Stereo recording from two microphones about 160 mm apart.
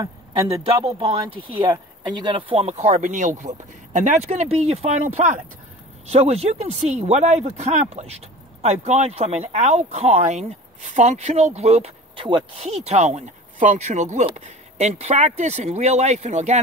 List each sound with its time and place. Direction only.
0.7 s speech: 20° right (ahead or behind)
1.0 s speech: 35° right (ahead or behind)